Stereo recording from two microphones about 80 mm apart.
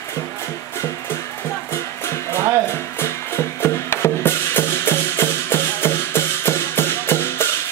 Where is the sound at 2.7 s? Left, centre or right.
Left.